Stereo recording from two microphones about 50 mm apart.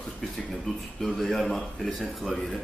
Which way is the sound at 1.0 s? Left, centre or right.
Centre.